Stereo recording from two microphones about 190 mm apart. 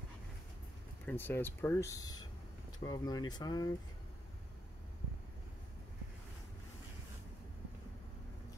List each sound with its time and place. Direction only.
1.0 s speech: 10° left (ahead or behind)